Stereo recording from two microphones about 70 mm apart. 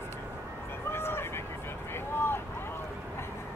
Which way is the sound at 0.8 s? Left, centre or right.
Left.